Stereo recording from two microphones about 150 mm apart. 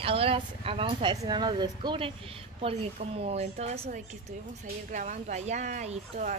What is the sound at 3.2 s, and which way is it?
Speech, 45° right (ahead or behind).